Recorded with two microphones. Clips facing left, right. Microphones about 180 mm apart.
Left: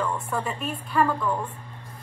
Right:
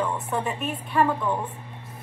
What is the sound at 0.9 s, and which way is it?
Speech, 20° right (ahead or behind).